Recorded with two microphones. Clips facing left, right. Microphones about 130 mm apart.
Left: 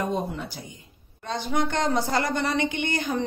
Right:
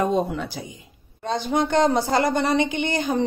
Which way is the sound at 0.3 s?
90° right.